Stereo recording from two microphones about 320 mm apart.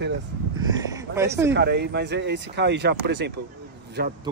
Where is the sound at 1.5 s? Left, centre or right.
Right.